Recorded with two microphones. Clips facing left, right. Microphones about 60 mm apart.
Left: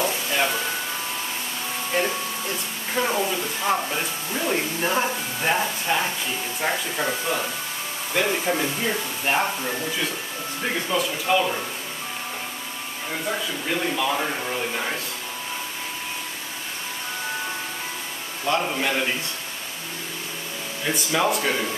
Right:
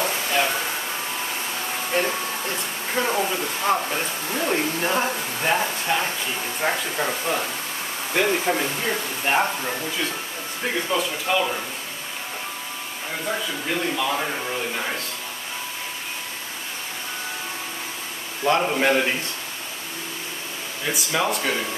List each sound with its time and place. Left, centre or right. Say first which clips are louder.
0.3 s a sound: right 2 dB; centre
3.0 s a man's voice: even; centre
10.9 s a man's voice: left 2 dB; centre
13.1 s a man's voice: even; centre
18.4 s speech: right 4 dB; centre
20.8 s a man's voice: left 1 dB; centre